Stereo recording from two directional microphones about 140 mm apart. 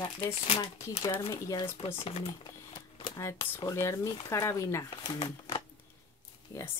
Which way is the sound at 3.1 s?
25° left (ahead or behind).